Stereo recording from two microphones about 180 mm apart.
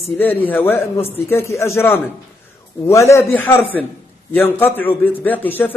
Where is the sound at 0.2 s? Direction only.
10° left (ahead or behind).